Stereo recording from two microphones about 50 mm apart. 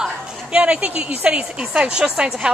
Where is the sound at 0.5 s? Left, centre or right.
Right.